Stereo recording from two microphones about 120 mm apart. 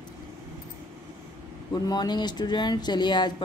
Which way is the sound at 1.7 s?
35° left (ahead or behind).